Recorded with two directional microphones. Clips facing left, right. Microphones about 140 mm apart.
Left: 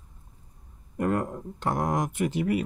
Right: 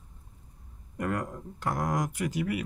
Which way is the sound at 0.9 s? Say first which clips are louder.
Left 5 dB; 30° left (ahead or behind).